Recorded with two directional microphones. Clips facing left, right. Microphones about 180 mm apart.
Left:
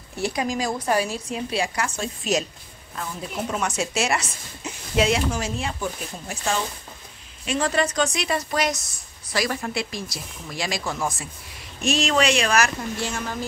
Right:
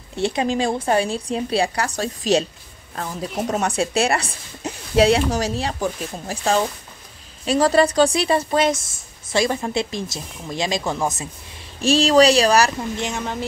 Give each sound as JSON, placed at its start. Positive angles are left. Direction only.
{"t": 0.1, "sound": "a woman's voice", "side_deg": -25}
{"t": 12.9, "sound": "speech", "side_deg": -20}